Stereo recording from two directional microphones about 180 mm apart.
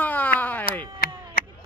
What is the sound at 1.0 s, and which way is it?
Chop, 55° left (ahead or behind).